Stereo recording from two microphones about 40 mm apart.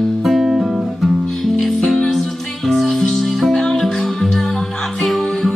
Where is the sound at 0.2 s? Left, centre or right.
Centre.